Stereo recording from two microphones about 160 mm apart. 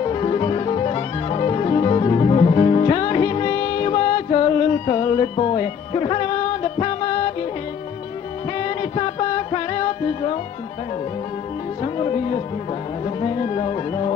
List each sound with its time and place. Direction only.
0.0 s music: 30° left (ahead or behind)
8.5 s music: 35° left (ahead or behind)
11.8 s music: 35° left (ahead or behind)